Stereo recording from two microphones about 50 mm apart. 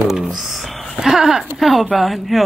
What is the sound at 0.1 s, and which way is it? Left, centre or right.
Speech, centre.